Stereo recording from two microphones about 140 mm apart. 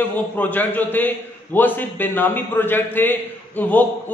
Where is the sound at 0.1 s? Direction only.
10° left (ahead or behind).